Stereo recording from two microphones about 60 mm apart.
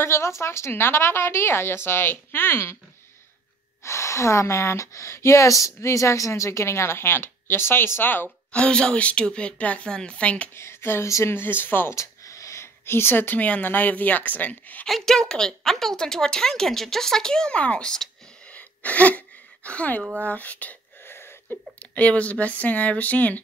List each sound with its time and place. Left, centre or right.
0.0 s a woman's voice: left
3.8 s speech: left
8.5 s a woman's voice: centre
10.5 s speech: left
11.1 s speech: left
11.3 s a woman's voice: left
11.9 s a sound: left
12.8 s speech: left
14.9 s a woman's voice: centre
18.5 s gasp: left
20.2 s speech: left
21.7 s speech: left